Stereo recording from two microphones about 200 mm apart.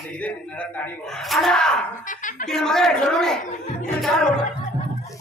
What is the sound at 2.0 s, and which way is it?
Speech, 40° left (ahead or behind).